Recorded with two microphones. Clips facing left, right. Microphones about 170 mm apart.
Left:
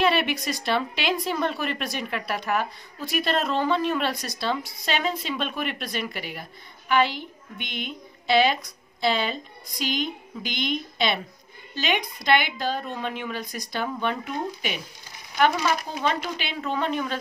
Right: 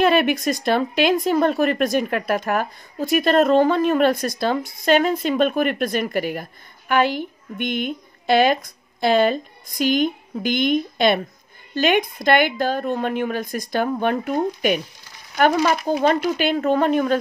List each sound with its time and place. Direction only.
0.0 s a woman's voice: 50° right (ahead or behind)